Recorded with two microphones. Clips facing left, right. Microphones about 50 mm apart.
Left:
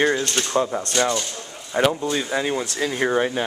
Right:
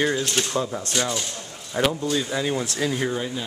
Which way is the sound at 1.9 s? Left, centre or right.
Centre.